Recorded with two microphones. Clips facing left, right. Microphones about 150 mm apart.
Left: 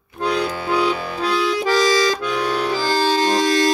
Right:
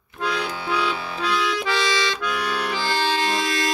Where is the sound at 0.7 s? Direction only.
45° left (ahead or behind).